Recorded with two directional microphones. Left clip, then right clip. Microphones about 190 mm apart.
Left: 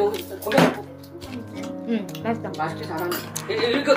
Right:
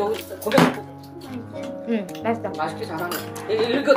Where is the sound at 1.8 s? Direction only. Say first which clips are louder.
Right 2 dB; centre (ahead or behind).